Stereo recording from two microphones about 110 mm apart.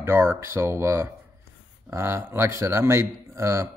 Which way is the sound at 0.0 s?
20° right (ahead or behind).